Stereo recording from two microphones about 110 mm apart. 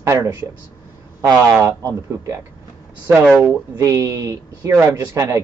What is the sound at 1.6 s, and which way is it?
Speech, 25° right (ahead or behind).